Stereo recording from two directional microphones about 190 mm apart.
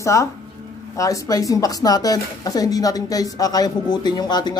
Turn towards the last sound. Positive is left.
turn(degrees=20)  # may be behind; listen again after turning